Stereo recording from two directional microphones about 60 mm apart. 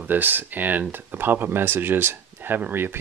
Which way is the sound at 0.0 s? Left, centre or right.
Right.